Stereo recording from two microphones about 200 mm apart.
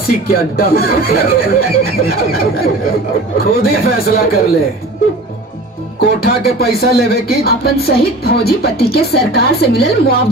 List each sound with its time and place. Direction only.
0.0 s speech: 50° left (ahead or behind)
5.9 s speech: 50° left (ahead or behind)